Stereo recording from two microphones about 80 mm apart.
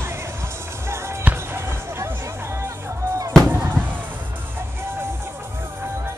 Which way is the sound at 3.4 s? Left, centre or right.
Right.